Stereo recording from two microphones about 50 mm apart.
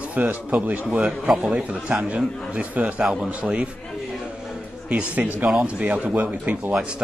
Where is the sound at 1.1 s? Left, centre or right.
Centre.